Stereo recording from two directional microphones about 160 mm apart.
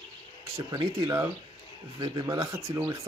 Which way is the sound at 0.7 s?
30° right (ahead or behind).